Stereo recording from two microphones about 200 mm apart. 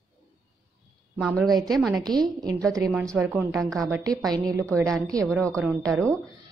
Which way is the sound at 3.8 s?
15° right (ahead or behind).